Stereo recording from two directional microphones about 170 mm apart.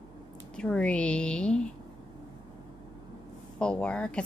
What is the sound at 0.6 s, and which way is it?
A woman's voice, 5° left (ahead or behind).